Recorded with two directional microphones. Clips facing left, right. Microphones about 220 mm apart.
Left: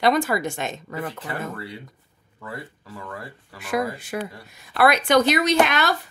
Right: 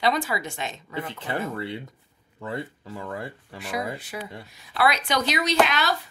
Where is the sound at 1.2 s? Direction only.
25° right (ahead or behind).